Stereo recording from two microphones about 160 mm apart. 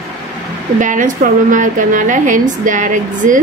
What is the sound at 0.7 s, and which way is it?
A woman's voice, 55° right (ahead or behind).